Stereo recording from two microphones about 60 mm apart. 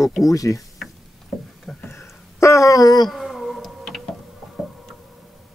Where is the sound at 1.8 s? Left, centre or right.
Left.